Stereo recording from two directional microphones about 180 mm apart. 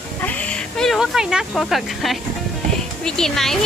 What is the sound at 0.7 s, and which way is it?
Speech, centre (ahead or behind).